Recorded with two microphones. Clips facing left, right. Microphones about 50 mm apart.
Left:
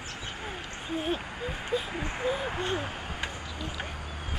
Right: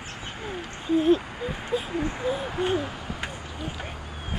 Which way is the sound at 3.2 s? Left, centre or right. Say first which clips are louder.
Right 2 dB; right.